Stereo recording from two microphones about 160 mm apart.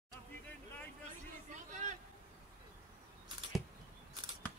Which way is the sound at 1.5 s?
50° right (ahead or behind).